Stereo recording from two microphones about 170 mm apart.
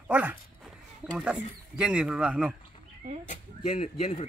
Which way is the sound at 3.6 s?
40° left (ahead or behind).